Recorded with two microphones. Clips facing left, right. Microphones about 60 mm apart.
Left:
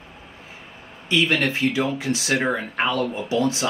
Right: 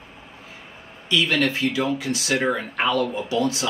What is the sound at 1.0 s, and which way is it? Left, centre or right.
Speech, left.